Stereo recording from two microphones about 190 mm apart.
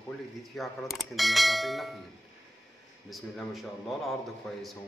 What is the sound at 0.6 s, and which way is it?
A man's voice, centre (ahead or behind).